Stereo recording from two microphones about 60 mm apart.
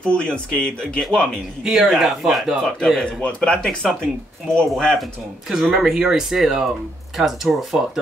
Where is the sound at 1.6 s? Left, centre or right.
Centre.